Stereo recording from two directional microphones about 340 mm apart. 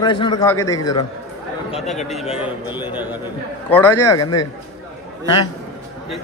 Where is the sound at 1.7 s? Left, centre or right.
Centre.